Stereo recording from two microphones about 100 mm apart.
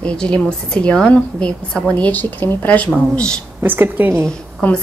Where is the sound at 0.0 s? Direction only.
10° left (ahead or behind).